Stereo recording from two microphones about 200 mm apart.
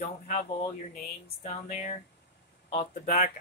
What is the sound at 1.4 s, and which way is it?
Speech, 35° left (ahead or behind).